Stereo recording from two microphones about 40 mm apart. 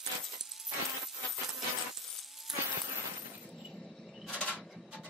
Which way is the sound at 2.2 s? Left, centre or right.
Centre.